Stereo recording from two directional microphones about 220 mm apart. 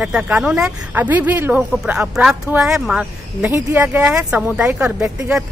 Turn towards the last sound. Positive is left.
turn(degrees=-5)  # may be behind; listen again after turning